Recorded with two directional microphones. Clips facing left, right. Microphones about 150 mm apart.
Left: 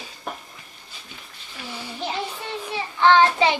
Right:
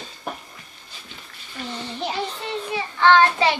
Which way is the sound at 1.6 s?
10° left (ahead or behind).